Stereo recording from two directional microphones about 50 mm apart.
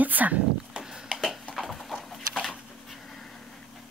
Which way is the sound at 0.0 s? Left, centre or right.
Right.